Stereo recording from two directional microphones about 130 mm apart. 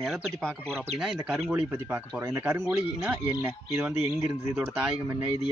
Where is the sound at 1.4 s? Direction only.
15° right (ahead or behind).